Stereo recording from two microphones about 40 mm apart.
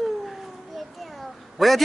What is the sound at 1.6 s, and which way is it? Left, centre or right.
Speech, centre.